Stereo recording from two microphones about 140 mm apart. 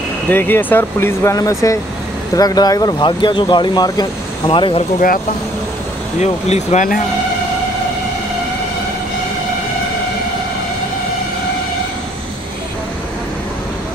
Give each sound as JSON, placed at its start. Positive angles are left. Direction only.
{"t": 0.3, "sound": "speech", "side_deg": 15}
{"t": 4.5, "sound": "speech", "side_deg": 40}
{"t": 6.1, "sound": "speech", "side_deg": 55}